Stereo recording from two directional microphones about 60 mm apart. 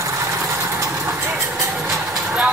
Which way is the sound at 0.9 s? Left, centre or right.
Right.